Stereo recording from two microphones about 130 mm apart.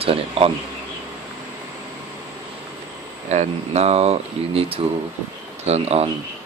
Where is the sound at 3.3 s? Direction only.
60° right (ahead or behind).